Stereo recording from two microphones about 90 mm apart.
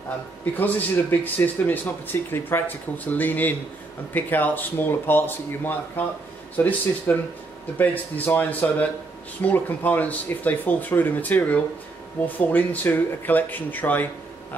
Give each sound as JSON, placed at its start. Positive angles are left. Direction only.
{"t": 0.6, "sound": "speech", "side_deg": 20}